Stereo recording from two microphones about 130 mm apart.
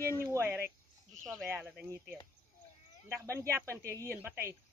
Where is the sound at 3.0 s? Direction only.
20° right (ahead or behind).